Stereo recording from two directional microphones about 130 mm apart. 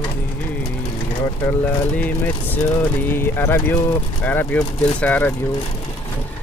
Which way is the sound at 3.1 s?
15° left (ahead or behind).